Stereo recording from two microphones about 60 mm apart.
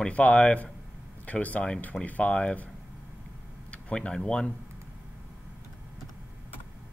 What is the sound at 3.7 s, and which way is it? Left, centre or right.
Speech, centre.